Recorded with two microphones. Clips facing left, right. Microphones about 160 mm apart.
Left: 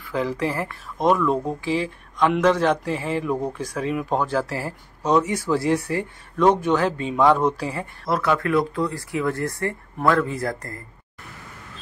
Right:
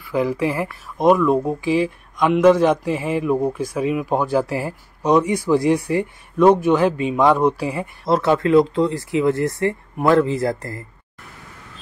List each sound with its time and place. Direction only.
0.0 s speech: 15° right (ahead or behind)
8.1 s speech: 25° right (ahead or behind)